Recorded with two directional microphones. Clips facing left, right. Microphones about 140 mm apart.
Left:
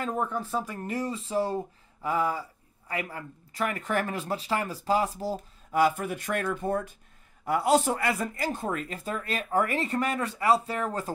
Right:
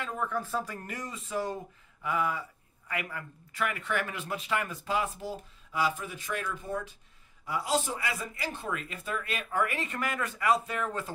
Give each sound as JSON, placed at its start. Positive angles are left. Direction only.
{"t": 0.0, "sound": "speech", "side_deg": 40}
{"t": 5.7, "sound": "speech", "side_deg": 55}